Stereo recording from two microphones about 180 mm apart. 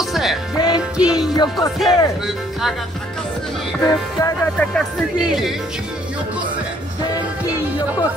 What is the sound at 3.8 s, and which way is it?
Music, 15° left (ahead or behind).